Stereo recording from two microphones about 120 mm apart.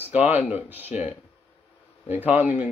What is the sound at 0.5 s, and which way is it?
Speech, 15° right (ahead or behind).